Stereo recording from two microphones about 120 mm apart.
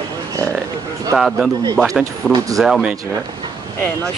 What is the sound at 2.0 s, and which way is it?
Speech, 30° right (ahead or behind).